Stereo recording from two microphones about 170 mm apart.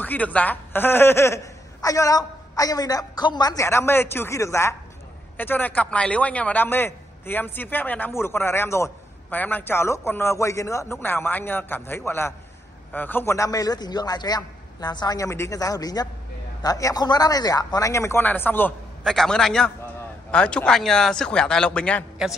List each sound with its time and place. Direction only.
0.0 s a man's voice: 10° left (ahead or behind)